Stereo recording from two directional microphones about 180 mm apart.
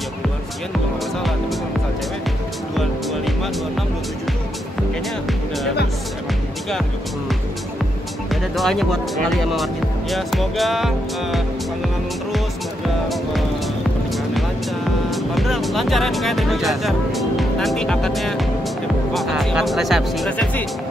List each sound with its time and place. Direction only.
2.7 s music: centre (ahead or behind)
8.3 s speech: centre (ahead or behind)
15.0 s speech: centre (ahead or behind)